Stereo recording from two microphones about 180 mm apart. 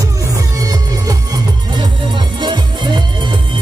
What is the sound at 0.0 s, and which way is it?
Music, 20° right (ahead or behind).